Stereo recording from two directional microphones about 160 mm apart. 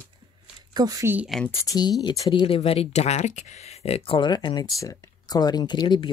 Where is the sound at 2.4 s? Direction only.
35° left (ahead or behind).